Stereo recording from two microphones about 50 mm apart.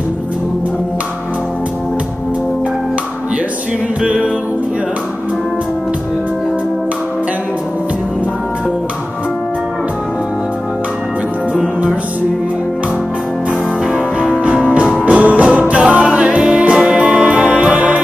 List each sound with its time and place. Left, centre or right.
14.4 s music: right